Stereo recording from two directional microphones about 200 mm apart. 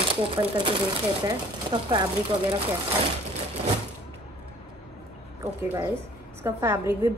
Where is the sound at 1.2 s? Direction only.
20° right (ahead or behind).